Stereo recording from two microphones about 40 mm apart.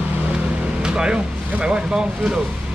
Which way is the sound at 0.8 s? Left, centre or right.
Right.